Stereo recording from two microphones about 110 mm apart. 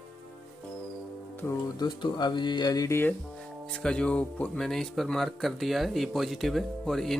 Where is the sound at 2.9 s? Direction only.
20° left (ahead or behind).